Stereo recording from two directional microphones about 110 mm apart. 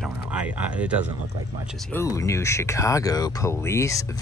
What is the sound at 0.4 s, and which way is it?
Speech, 15° right (ahead or behind).